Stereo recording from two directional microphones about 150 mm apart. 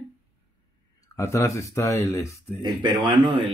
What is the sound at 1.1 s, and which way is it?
Speech, 20° left (ahead or behind).